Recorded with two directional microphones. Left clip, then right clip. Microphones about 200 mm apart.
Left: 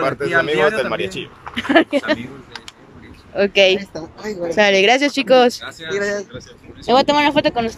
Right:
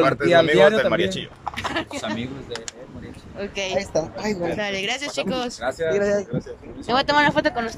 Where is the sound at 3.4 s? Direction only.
50° left (ahead or behind).